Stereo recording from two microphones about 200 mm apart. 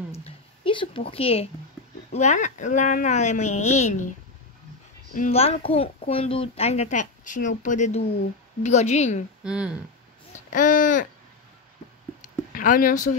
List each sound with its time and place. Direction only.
0.2 s a sound: 25° left (ahead or behind)
2.1 s speech: 35° left (ahead or behind)
5.1 s speech: 35° left (ahead or behind)
9.4 s speech: 5° right (ahead or behind)
10.3 s speech: 40° left (ahead or behind)
12.2 s a sound: 40° left (ahead or behind)